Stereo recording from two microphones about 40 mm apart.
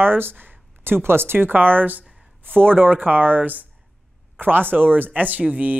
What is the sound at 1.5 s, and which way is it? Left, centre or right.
Speech, right.